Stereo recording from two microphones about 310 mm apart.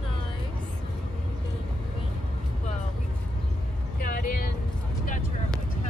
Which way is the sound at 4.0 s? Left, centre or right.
Left.